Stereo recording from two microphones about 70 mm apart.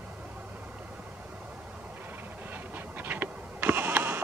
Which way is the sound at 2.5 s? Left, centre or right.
Right.